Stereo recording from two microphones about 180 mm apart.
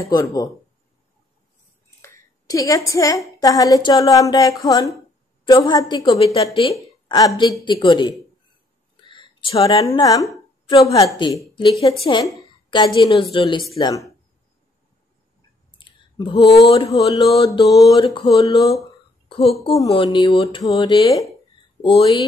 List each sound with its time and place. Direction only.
0.0 s a woman's voice: 20° left (ahead or behind)
2.0 s a woman's voice: 20° left (ahead or behind)
6.8 s a woman's voice: 20° left (ahead or behind)
15.8 s a sound: 25° left (ahead or behind)
16.6 s speech: 35° left (ahead or behind)
17.1 s a woman's voice: 20° left (ahead or behind)